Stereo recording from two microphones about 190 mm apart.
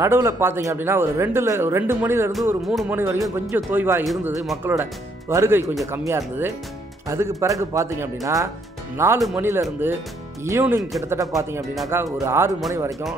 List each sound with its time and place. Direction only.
0.0 s speech: 15° right (ahead or behind)
2.6 s speech: centre (ahead or behind)
3.0 s speech: 15° right (ahead or behind)